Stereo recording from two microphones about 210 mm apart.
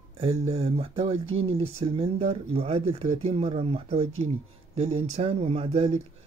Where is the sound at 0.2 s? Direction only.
30° right (ahead or behind).